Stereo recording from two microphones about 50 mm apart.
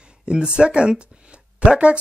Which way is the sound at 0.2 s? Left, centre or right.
Centre.